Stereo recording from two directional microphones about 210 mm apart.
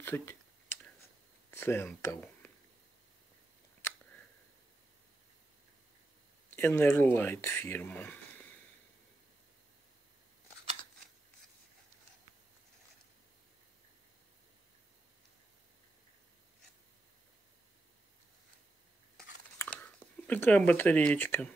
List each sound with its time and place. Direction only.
0.0 s speech: 10° left (ahead or behind)
1.5 s speech: 10° left (ahead or behind)
6.5 s speech: 10° left (ahead or behind)
19.1 s a sound: 10° left (ahead or behind)